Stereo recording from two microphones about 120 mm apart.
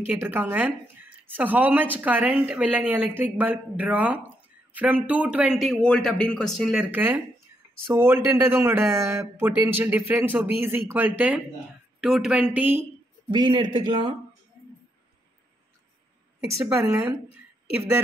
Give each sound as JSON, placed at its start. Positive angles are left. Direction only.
{"t": 0.0, "sound": "a man's voice", "side_deg": -15}
{"t": 6.8, "sound": "speech", "side_deg": -15}
{"t": 13.3, "sound": "a man's voice", "side_deg": -40}